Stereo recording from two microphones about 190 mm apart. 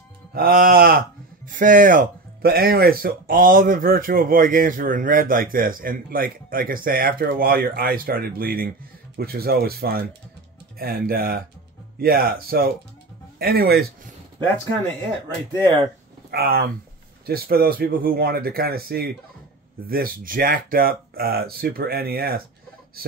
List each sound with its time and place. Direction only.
0.3 s speech: 50° right (ahead or behind)
16.3 s speech: 55° right (ahead or behind)